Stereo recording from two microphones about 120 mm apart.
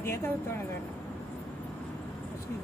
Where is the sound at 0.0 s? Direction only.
20° left (ahead or behind).